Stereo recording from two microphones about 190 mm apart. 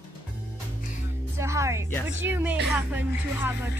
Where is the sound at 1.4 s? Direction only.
15° right (ahead or behind).